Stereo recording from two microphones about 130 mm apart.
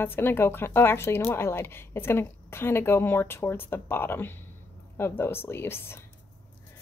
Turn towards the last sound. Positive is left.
turn(degrees=20)  # may be behind; listen again after turning